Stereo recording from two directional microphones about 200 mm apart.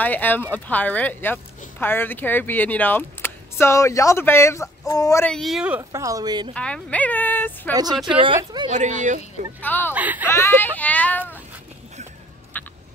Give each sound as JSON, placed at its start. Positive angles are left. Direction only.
{"t": 0.0, "sound": "speech", "side_deg": 10}
{"t": 5.3, "sound": "speech", "side_deg": 0}
{"t": 5.9, "sound": "speech", "side_deg": -15}
{"t": 6.5, "sound": "speech", "side_deg": 5}
{"t": 7.7, "sound": "speech", "side_deg": -20}
{"t": 8.7, "sound": "speech", "side_deg": -35}
{"t": 9.6, "sound": "speech", "side_deg": 10}
{"t": 9.9, "sound": "speech", "side_deg": -10}
{"t": 10.3, "sound": "speech", "side_deg": 10}
{"t": 12.6, "sound": "a sound", "side_deg": 10}